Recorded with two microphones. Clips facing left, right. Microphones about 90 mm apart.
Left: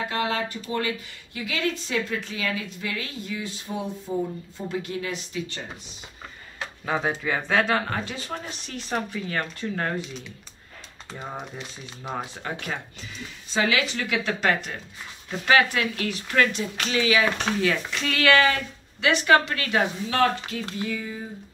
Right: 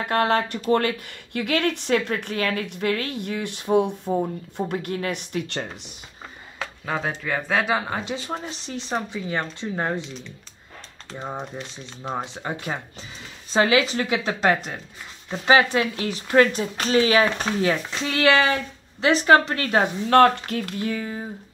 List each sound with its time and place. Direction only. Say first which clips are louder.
0.1 s speech: right 6 dB; 55° right (ahead or behind)
6.9 s speech: left 1 dB; 5° left (ahead or behind); by 10.0 s 20° right (ahead or behind)
11.1 s speech: right 4 dB; 25° right (ahead or behind)
12.4 s speech: right 3 dB; 20° right (ahead or behind)
13.5 s speech: right 5 dB; 40° right (ahead or behind)
20.1 s speech: right 7 dB; 55° right (ahead or behind)
20.7 s a sound: right 3 dB; 50° right (ahead or behind)